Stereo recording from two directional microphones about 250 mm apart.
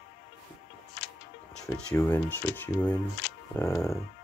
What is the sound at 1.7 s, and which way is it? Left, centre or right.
Speech, centre.